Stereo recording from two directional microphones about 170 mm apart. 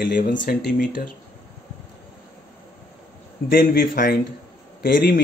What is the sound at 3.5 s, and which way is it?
Speech, 60° left (ahead or behind).